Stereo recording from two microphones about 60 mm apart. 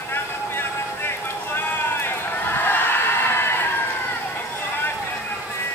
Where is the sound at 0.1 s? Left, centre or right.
Left.